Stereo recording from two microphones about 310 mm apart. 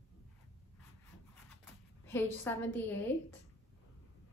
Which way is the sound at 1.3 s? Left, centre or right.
Centre.